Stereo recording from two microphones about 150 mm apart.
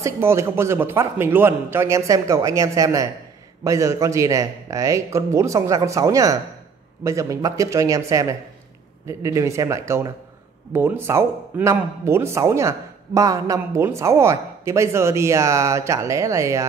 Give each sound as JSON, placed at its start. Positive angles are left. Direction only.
{"t": 0.0, "sound": "speech", "side_deg": -15}